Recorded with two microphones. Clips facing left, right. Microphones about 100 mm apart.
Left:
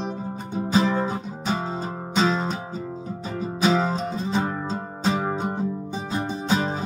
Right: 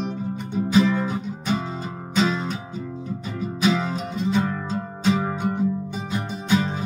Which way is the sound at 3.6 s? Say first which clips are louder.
Left 1 dB; 35° left (ahead or behind).